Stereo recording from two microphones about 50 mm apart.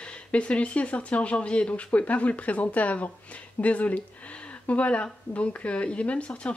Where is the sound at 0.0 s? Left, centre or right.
Left.